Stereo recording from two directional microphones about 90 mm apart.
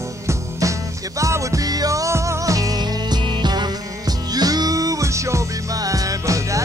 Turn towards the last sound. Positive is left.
turn(degrees=-35)  # may be behind; listen again after turning